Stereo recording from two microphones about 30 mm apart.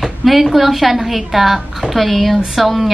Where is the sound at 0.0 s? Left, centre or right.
Centre.